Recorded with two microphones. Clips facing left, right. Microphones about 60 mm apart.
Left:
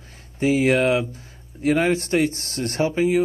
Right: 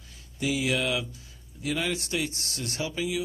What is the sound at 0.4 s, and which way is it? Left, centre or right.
Speech, left.